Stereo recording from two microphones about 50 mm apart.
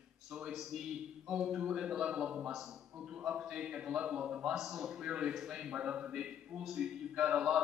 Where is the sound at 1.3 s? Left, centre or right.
Centre.